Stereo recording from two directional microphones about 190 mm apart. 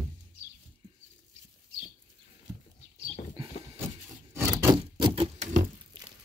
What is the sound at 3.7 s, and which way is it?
Rub, 15° right (ahead or behind).